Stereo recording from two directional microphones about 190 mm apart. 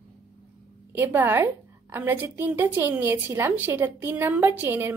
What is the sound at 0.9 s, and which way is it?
A woman's voice, 10° right (ahead or behind).